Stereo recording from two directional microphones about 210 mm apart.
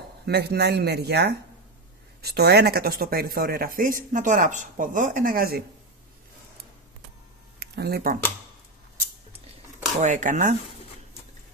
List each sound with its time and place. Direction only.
0.2 s speech: 50° right (ahead or behind)
7.5 s speech: 50° right (ahead or behind)
9.9 s speech: 35° right (ahead or behind)